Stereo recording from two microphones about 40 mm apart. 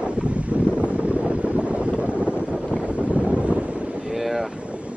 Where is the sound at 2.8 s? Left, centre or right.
Right.